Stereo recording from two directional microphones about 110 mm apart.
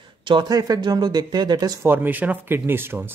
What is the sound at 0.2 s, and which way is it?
Speech, 45° right (ahead or behind).